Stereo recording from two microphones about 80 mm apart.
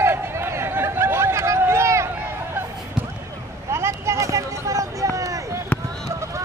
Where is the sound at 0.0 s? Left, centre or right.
Right.